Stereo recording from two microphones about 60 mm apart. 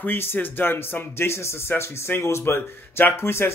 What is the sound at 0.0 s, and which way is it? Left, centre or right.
Speech, left.